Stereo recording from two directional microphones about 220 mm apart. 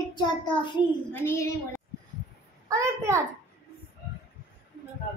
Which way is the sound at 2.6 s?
15° right (ahead or behind).